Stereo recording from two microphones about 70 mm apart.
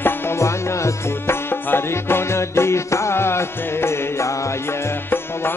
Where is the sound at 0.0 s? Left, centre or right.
Left.